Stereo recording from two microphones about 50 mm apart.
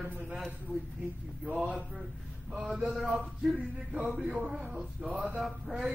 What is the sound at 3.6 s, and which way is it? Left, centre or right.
Speech, right.